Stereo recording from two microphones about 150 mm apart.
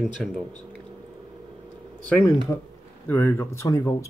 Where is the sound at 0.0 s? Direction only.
Centre (ahead or behind).